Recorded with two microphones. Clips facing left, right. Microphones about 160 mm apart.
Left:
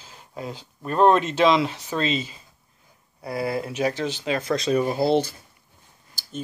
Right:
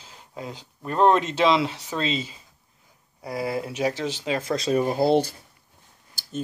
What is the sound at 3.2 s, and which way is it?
Speech, 20° right (ahead or behind).